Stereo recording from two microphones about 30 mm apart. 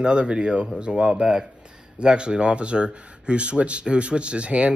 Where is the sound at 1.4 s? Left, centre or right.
Right.